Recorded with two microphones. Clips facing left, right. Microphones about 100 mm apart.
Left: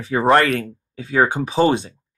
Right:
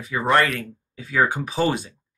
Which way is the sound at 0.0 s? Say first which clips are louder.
Left 4 dB; 40° left (ahead or behind).